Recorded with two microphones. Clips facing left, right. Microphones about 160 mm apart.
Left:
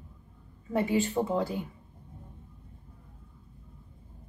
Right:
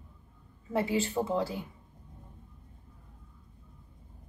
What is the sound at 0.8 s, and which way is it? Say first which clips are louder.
Speech: left 2 dB; 15° left (ahead or behind).